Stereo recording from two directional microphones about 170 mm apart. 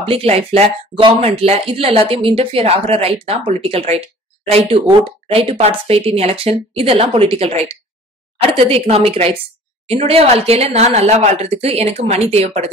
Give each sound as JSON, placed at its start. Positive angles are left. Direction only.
{"t": 0.0, "sound": "speech", "side_deg": -35}
{"t": 8.5, "sound": "speech", "side_deg": -35}